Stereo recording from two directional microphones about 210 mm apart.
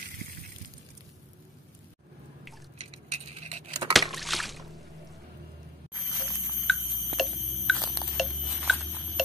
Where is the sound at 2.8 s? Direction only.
30° right (ahead or behind).